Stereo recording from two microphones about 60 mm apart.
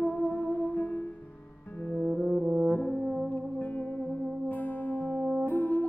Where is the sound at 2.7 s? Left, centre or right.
Left.